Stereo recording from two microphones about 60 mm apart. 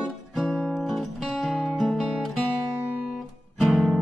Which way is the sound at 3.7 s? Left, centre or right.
Centre.